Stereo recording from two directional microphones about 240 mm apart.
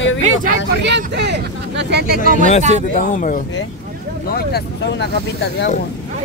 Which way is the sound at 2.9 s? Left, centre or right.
Left.